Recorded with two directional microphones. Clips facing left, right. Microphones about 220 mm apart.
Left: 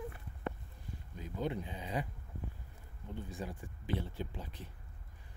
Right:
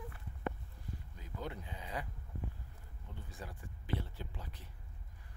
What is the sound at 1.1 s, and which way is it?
Speech, 20° left (ahead or behind).